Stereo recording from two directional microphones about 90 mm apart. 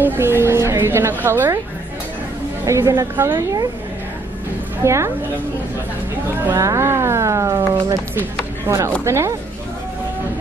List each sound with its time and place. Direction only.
0.0 s a woman's voice: 25° right (ahead or behind)
2.6 s speech: 35° right (ahead or behind)
4.8 s speech: 30° right (ahead or behind)
6.4 s speech: 30° right (ahead or behind)